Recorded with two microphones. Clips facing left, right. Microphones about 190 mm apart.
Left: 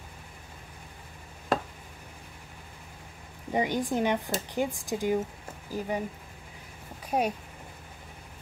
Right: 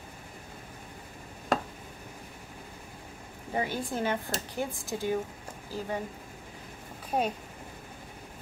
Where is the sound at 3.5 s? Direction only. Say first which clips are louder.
Left 4 dB; 15° left (ahead or behind).